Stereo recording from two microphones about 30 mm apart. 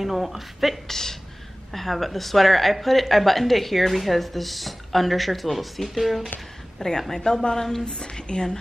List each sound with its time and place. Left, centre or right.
0.0 s speech: centre
0.8 s speech: centre
1.7 s speech: centre
6.8 s a woman's voice: centre